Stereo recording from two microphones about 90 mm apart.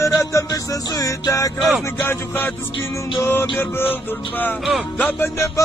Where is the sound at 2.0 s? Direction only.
25° left (ahead or behind).